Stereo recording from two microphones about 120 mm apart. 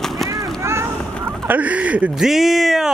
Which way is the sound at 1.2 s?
15° right (ahead or behind).